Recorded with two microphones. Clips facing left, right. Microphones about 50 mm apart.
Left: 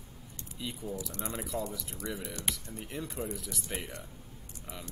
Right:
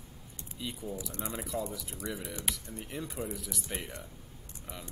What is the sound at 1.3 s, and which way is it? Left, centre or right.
Speech, centre.